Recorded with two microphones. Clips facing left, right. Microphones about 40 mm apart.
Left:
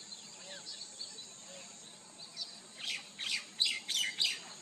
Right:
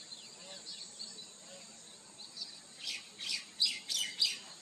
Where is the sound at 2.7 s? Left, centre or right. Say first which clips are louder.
Left 3 dB; left.